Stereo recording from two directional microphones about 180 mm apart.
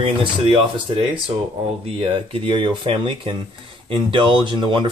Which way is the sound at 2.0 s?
30° right (ahead or behind).